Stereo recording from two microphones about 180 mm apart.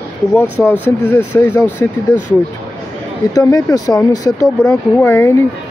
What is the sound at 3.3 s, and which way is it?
Speech, 20° left (ahead or behind).